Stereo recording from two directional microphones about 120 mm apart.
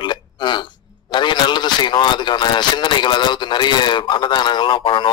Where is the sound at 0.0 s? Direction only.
40° left (ahead or behind).